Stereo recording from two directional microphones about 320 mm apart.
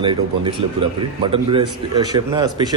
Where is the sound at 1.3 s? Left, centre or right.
Centre.